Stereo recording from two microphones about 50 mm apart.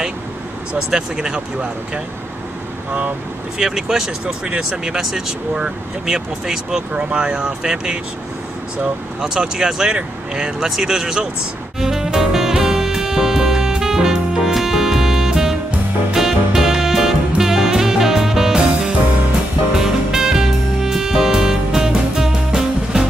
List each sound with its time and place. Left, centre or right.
0.8 s speech: centre
3.5 s speech: centre
6.9 s speech: centre
9.2 s speech: centre
11.8 s music: centre